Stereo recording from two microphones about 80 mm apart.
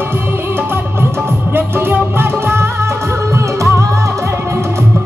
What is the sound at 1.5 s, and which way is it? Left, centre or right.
Music, right.